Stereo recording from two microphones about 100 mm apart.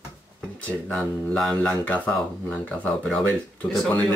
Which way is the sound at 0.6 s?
15° left (ahead or behind).